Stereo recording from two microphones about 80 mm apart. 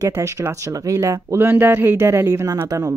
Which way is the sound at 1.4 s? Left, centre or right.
Right.